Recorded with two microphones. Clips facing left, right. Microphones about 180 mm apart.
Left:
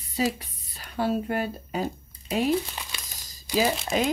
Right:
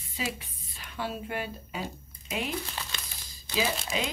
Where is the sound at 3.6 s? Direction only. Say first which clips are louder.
Left 6 dB; 45° left (ahead or behind).